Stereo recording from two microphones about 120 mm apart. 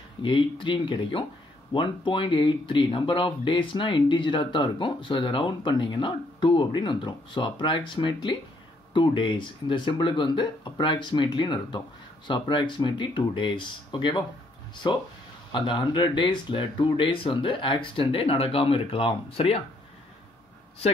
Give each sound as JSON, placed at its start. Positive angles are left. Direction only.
{"t": 0.2, "sound": "speech", "side_deg": 45}
{"t": 15.5, "sound": "speech", "side_deg": 40}